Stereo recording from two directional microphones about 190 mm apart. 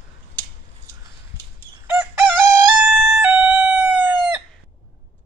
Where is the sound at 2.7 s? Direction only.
Centre (ahead or behind).